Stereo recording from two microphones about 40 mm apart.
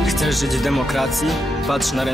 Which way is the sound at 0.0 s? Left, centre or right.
Centre.